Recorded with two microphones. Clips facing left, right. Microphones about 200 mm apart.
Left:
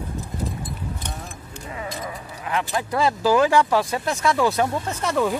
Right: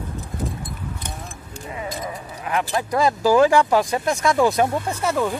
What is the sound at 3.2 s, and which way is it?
Speech, 15° right (ahead or behind).